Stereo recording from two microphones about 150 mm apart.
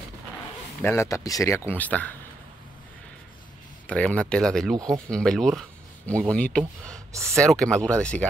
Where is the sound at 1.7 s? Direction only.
10° left (ahead or behind).